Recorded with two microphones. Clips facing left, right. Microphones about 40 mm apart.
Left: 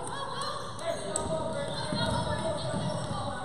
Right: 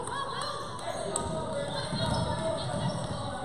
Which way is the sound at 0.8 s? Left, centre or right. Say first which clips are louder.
Left 2 dB; centre.